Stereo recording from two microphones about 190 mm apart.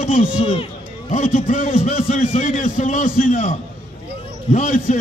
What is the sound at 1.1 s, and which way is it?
A man's voice, 40° left (ahead or behind).